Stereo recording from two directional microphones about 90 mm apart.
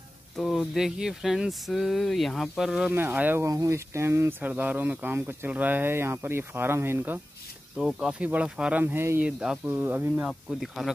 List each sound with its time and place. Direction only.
0.4 s speech: 5° right (ahead or behind)
2.9 s speech: 20° right (ahead or behind)
3.4 s speech: 35° right (ahead or behind)
4.4 s speech: 20° right (ahead or behind)
7.7 s speech: 10° right (ahead or behind)
8.8 s speech: 25° right (ahead or behind)
9.2 s speech: 10° right (ahead or behind)
9.7 s speech: 20° right (ahead or behind)
10.8 s speech: centre (ahead or behind)